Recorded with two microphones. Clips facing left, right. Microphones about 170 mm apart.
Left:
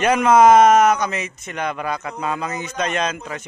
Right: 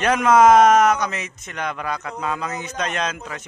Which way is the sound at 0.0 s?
Centre (ahead or behind).